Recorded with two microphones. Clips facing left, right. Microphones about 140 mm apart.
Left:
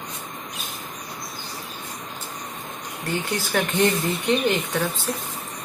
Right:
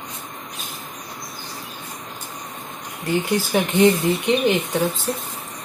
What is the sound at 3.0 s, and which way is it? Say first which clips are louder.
Speech: right 6 dB; 10° right (ahead or behind).